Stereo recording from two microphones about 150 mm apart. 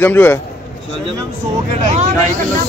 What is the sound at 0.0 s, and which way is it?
Speech, 15° left (ahead or behind).